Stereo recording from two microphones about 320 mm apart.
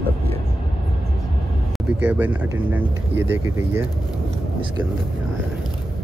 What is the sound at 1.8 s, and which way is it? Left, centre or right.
Speech, centre.